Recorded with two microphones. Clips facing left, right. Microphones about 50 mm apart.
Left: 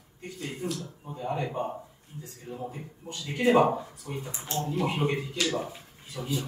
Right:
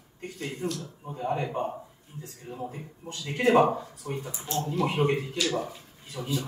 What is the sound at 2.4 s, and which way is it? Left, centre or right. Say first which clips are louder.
Speech: even; centre.